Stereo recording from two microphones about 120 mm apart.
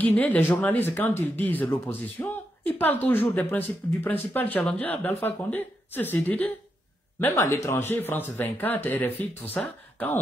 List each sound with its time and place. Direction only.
0.0 s speech: 10° left (ahead or behind)